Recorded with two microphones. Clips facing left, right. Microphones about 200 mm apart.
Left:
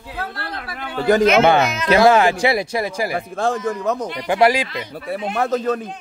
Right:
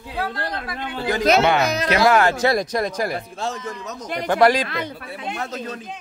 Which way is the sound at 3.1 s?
55° left (ahead or behind).